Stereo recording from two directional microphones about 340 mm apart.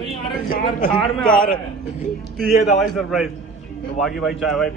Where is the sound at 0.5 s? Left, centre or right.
Left.